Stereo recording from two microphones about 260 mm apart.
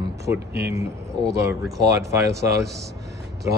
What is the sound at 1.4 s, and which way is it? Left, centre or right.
Speech, centre.